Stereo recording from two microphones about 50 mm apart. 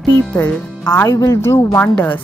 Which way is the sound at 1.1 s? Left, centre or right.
Left.